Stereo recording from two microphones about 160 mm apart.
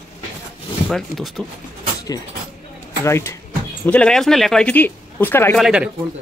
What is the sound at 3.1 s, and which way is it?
Speech, 15° left (ahead or behind).